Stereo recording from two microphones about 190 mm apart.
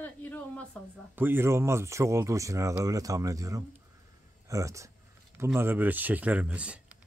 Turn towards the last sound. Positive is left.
turn(degrees=-5)  # may be behind; listen again after turning